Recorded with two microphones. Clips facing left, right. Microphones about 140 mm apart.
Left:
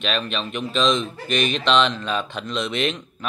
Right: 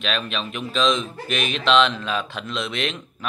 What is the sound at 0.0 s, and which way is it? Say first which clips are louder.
A woman's voice: left 1 dB; centre (ahead or behind).